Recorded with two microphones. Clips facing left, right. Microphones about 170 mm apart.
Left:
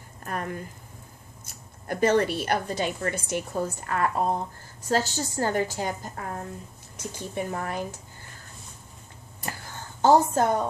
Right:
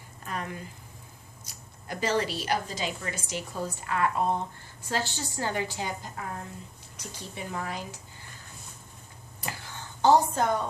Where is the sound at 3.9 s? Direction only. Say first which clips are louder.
Even; 40° left (ahead or behind).